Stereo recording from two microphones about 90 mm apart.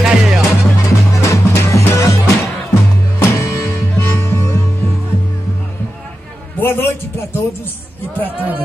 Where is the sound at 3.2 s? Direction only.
35° left (ahead or behind).